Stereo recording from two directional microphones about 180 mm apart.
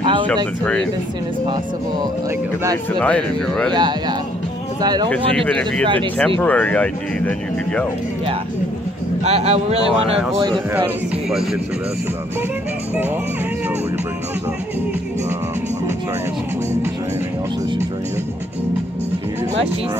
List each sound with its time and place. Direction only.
0.0 s a sound: 25° right (ahead or behind)
3.0 s a man's voice: 5° left (ahead or behind)
4.8 s speech: 20° right (ahead or behind)
5.5 s a man's voice: 5° left (ahead or behind)
9.2 s speech: 35° right (ahead or behind)